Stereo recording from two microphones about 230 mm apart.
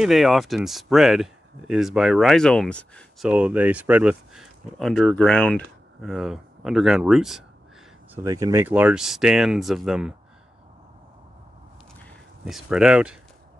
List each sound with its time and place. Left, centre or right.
0.0 s speech: centre
3.3 s speech: centre
8.1 s speech: centre
12.0 s speech: centre